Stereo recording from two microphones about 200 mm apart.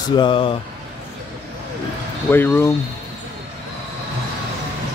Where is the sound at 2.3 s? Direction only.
10° left (ahead or behind).